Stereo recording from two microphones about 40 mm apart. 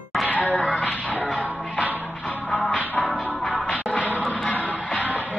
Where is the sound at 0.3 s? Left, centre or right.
Left.